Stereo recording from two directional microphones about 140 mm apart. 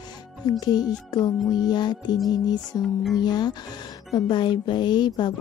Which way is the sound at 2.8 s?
Centre (ahead or behind).